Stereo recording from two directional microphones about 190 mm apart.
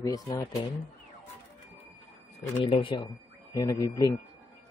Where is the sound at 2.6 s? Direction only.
25° left (ahead or behind).